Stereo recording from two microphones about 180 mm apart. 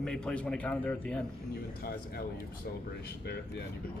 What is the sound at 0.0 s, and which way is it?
A man's voice, 5° left (ahead or behind).